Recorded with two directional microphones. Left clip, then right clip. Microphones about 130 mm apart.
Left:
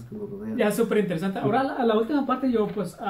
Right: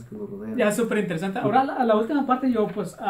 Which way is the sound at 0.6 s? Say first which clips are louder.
Even; 30° right (ahead or behind).